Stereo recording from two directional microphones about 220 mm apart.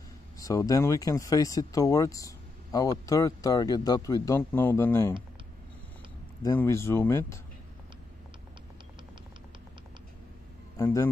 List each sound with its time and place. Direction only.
0.4 s speech: 15° left (ahead or behind)
6.4 s speech: 10° left (ahead or behind)
10.8 s speech: 15° left (ahead or behind)